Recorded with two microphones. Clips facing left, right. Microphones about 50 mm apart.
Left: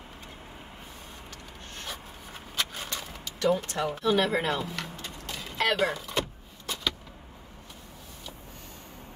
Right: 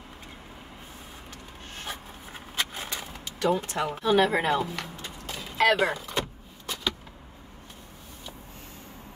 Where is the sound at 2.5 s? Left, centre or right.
Right.